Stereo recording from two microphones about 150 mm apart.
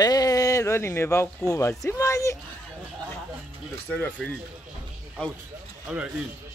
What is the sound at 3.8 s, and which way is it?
Speech, 5° left (ahead or behind).